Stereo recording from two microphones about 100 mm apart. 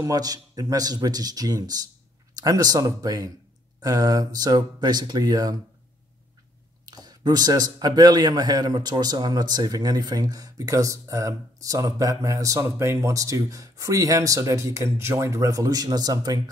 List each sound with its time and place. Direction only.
0.0 s a man's voice: 40° right (ahead or behind)
6.9 s a man's voice: 40° right (ahead or behind)